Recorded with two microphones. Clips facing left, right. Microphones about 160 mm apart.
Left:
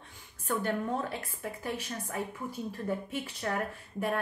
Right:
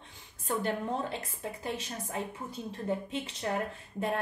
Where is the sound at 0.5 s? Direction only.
20° right (ahead or behind).